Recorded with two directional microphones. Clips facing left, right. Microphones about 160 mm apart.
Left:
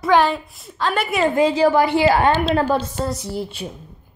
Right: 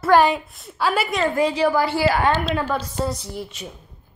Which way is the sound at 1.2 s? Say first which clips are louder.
Left 5 dB; 25° left (ahead or behind).